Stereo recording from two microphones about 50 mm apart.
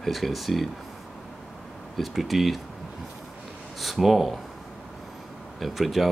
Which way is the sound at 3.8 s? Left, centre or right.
Centre.